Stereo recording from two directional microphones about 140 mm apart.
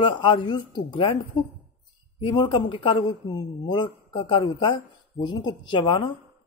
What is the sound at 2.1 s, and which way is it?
A man's voice, 35° left (ahead or behind).